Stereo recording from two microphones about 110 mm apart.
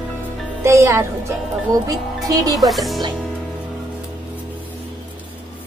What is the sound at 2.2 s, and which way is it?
Speech, 35° right (ahead or behind).